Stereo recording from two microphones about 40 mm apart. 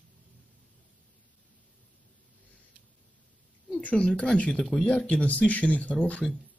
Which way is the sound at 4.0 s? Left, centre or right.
Centre.